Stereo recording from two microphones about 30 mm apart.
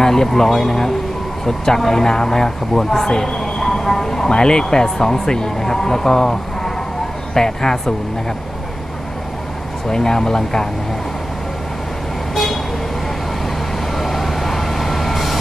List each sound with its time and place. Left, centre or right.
0.0 s speech: centre
3.1 s a sound: left
4.3 s speech: left
9.8 s speech: left
13.9 s vehicle: centre